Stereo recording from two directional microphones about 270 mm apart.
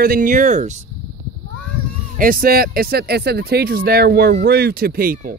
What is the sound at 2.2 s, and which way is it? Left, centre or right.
Speech, right.